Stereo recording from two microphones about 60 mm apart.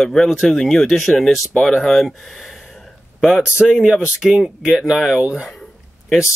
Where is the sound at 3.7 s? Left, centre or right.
Centre.